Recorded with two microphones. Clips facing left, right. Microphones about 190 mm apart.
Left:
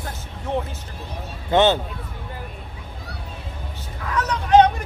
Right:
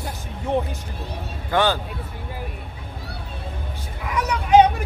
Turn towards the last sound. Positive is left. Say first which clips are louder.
# even
turn(degrees=-10)  # may be behind; listen again after turning